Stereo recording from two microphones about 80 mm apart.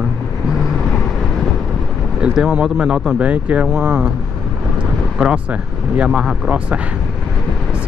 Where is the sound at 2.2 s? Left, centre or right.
Centre.